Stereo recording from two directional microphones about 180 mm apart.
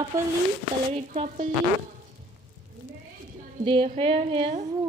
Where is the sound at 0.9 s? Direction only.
40° right (ahead or behind).